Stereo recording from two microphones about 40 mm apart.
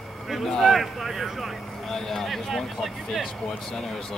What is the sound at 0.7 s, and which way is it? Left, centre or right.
Speech, centre.